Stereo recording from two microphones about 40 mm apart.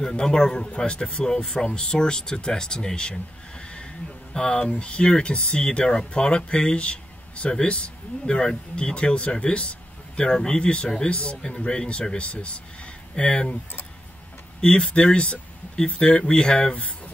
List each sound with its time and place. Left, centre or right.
0.0 s a man's voice: centre
14.6 s speech: left